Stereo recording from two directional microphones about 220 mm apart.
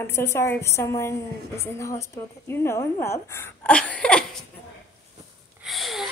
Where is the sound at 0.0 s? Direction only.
10° left (ahead or behind).